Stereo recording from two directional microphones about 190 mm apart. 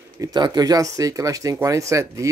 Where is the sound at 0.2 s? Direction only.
20° right (ahead or behind).